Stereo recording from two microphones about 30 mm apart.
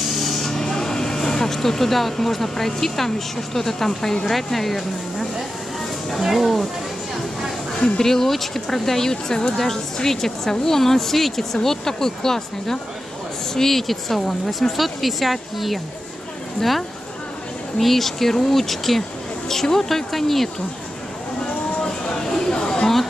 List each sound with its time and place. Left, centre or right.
0.0 s vehicle: centre
3.5 s speech: centre
6.2 s speech: centre
8.0 s speech: centre
9.1 s a woman's voice: left
9.9 s speech: centre
17.7 s speech: centre
21.8 s a sound: left
22.2 s a sound: centre